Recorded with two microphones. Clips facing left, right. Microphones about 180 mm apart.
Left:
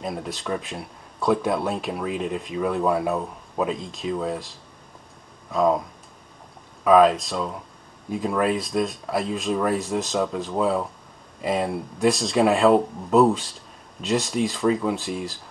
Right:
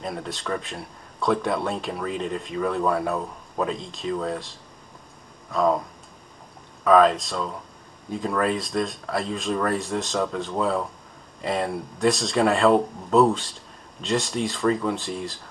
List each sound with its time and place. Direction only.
0.0 s speech: centre (ahead or behind)
6.8 s speech: 5° left (ahead or behind)